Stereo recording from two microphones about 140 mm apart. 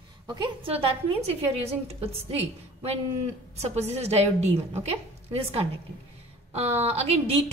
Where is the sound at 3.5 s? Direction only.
50° right (ahead or behind).